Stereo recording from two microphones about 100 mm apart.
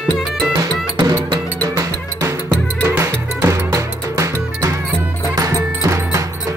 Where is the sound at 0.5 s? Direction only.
40° right (ahead or behind).